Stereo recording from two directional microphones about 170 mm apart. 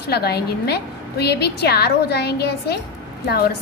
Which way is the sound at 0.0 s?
70° left (ahead or behind).